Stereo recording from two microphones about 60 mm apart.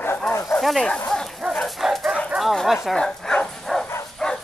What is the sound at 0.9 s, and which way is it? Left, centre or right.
Dog, centre.